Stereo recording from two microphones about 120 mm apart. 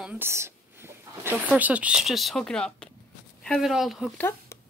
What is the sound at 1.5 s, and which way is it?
Speech, 10° right (ahead or behind).